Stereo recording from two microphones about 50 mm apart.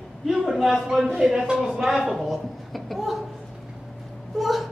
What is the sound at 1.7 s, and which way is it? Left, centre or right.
A woman's voice, centre.